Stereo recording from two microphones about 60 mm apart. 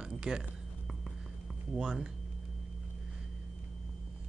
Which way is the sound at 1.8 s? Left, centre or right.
Centre.